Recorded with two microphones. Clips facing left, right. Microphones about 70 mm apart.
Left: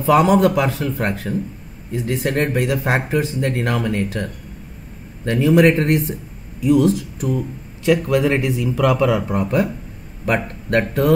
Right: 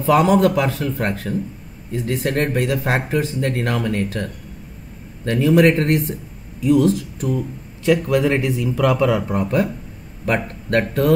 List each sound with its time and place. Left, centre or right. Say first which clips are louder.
0.0 s speech: left 1 dB; centre